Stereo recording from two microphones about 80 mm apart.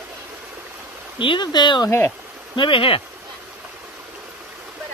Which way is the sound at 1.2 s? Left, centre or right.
Left.